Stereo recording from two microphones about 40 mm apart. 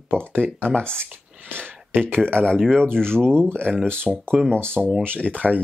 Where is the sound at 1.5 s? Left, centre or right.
Right.